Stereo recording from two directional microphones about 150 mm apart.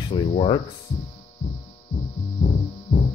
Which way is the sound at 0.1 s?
35° left (ahead or behind).